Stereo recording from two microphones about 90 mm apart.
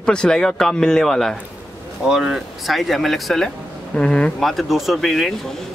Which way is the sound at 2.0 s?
5° right (ahead or behind).